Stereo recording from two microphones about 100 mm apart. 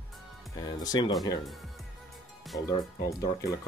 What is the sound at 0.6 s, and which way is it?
Speech, 40° left (ahead or behind).